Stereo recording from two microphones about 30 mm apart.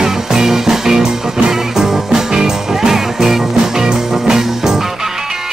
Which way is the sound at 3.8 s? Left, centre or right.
Right.